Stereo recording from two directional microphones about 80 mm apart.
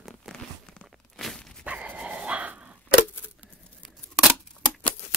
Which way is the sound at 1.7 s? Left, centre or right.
Centre.